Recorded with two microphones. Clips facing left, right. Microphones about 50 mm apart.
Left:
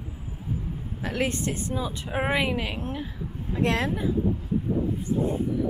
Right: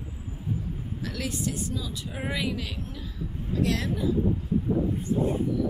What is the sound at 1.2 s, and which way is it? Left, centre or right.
A woman's voice, left.